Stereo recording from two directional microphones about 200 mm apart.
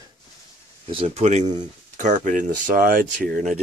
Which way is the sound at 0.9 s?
30° right (ahead or behind).